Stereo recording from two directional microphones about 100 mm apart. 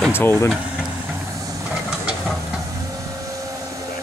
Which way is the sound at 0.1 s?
20° left (ahead or behind).